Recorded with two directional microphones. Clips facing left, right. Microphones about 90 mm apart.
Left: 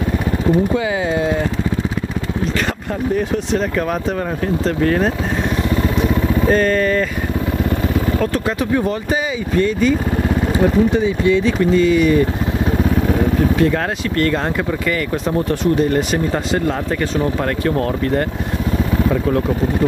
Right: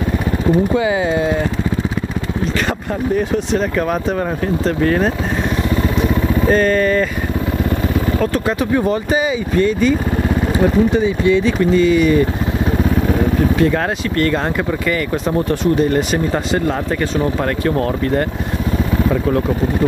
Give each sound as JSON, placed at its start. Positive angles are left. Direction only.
{"t": 0.5, "sound": "speech", "side_deg": -15}
{"t": 3.2, "sound": "speech", "side_deg": -15}
{"t": 5.8, "sound": "vehicle", "side_deg": -25}
{"t": 8.2, "sound": "speech", "side_deg": -15}